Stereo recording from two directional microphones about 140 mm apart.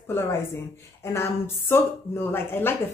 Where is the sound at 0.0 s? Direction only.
15° left (ahead or behind).